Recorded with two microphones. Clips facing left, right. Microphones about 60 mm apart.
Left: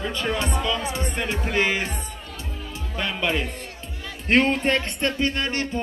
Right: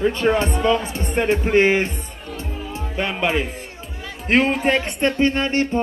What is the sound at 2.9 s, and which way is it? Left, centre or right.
Speech, right.